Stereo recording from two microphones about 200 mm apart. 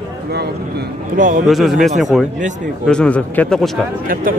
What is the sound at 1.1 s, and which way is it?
Speech, 40° right (ahead or behind).